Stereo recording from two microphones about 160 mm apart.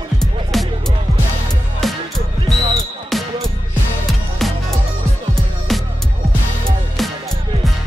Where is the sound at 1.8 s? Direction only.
Centre (ahead or behind).